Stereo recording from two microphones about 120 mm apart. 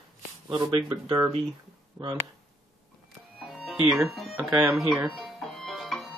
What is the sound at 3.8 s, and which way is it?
Speech, 5° right (ahead or behind).